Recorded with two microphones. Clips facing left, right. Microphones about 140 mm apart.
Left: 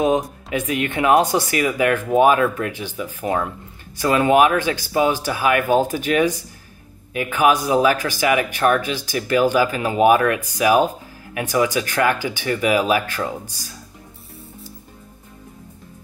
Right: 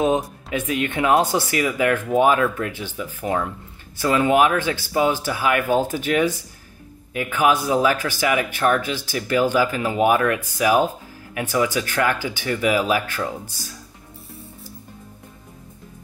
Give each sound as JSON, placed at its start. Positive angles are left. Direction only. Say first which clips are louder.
{"t": 0.1, "sound": "speech", "louder": "left 2 dB", "side_deg": 15}
{"t": 3.3, "sound": "speech", "louder": "left 1 dB", "side_deg": 25}
{"t": 3.9, "sound": "speech", "louder": "left 2 dB", "side_deg": 15}